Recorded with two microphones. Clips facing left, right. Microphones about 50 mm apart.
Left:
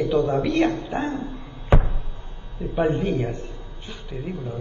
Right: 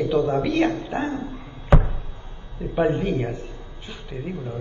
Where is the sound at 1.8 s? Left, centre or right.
Right.